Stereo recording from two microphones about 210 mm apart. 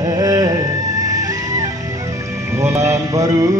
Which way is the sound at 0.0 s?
15° right (ahead or behind).